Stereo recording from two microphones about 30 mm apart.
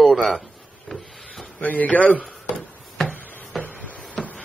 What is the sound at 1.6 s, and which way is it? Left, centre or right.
Speech, left.